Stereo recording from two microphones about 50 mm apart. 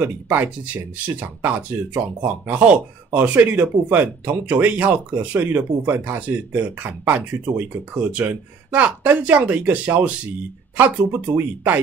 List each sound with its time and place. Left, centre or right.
0.0 s speech: right
0.9 s speech: right
7.2 s speech: right
10.8 s speech: right